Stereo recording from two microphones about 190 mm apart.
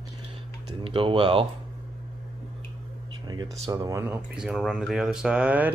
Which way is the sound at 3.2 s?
20° right (ahead or behind).